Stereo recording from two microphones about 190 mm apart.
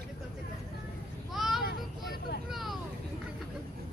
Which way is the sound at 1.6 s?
55° left (ahead or behind).